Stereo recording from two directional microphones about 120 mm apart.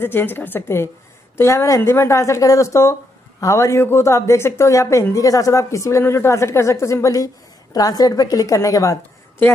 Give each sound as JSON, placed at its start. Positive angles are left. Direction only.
{"t": 0.0, "sound": "a woman's voice", "side_deg": 15}